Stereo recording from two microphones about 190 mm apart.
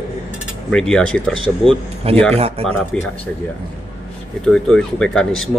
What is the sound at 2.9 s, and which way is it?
Speech, 5° left (ahead or behind).